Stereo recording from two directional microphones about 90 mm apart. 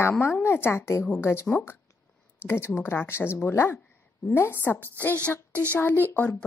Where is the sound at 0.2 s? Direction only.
30° left (ahead or behind).